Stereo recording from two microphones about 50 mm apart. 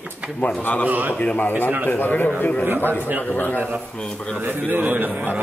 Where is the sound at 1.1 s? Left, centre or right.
Left.